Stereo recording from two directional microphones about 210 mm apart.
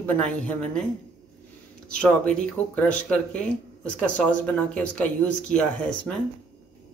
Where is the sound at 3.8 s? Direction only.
5° left (ahead or behind).